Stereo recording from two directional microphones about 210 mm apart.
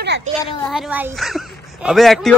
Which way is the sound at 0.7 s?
5° right (ahead or behind).